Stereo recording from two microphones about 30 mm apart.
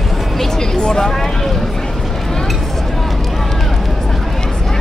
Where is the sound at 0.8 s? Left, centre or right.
Centre.